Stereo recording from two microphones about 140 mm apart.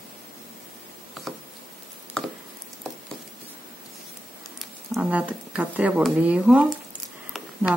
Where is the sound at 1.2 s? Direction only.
Centre (ahead or behind).